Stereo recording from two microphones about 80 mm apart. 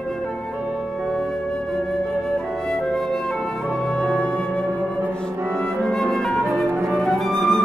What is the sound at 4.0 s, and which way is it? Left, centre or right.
Music, centre.